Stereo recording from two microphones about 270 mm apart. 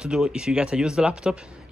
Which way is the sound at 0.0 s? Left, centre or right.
Centre.